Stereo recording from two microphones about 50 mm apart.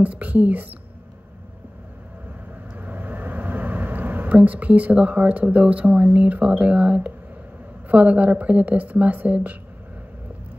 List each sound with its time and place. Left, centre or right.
0.0 s speech: right
2.8 s a sound: right
6.1 s speech: right